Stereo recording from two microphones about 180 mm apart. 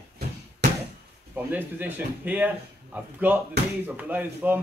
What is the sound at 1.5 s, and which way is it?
Speech, 10° right (ahead or behind).